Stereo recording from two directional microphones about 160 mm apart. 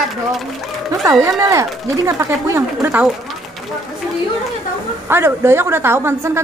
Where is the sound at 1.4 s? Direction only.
20° right (ahead or behind).